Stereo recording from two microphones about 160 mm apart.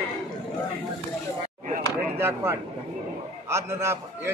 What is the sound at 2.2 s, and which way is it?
Speech, 15° right (ahead or behind).